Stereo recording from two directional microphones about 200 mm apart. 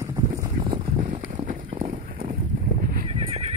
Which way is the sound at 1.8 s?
45° right (ahead or behind).